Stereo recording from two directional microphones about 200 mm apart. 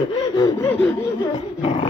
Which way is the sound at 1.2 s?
25° left (ahead or behind).